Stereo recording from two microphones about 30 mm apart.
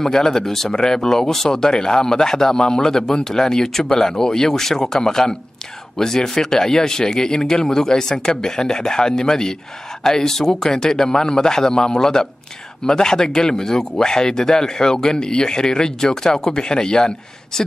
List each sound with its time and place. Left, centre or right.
0.0 s speech: centre
0.5 s speech: centre; by 17.1 s left